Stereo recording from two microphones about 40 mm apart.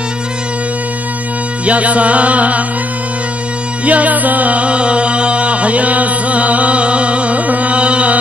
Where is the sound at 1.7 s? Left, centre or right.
Right.